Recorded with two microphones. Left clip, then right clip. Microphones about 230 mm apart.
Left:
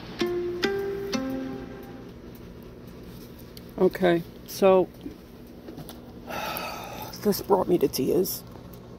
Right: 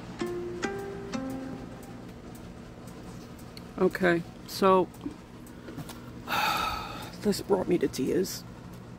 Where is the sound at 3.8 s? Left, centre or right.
Centre.